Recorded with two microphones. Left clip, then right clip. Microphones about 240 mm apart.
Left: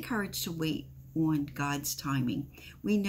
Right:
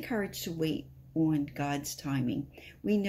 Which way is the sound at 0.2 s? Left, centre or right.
Centre.